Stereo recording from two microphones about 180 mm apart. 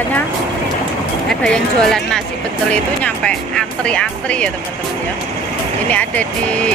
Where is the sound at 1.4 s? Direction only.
5° left (ahead or behind).